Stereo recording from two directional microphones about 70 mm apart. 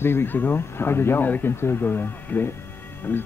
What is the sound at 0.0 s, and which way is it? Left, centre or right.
Speech, left.